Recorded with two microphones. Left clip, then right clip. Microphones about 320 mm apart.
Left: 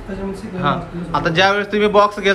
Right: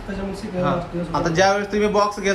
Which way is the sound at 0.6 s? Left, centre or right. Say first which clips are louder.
Left 3 dB; centre.